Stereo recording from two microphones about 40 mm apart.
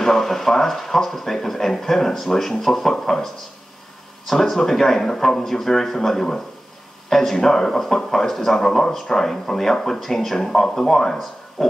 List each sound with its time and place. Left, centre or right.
0.0 s speech: centre
4.3 s speech: centre
8.6 s speech: centre